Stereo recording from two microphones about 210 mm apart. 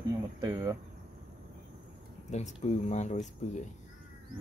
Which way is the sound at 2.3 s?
30° left (ahead or behind).